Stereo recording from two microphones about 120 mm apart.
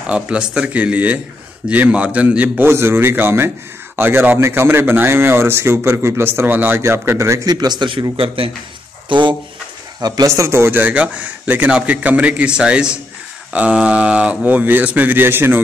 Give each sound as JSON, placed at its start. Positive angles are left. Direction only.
{"t": 0.0, "sound": "a man's voice", "side_deg": -10}
{"t": 9.9, "sound": "a man's voice", "side_deg": -30}